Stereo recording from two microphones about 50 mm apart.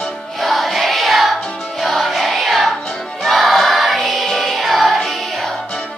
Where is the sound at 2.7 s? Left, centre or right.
Centre.